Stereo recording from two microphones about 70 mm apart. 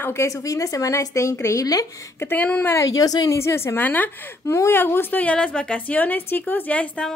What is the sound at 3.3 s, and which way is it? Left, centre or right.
Speech, left.